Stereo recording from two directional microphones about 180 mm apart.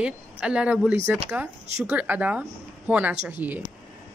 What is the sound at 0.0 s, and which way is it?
A woman's voice, 5° right (ahead or behind).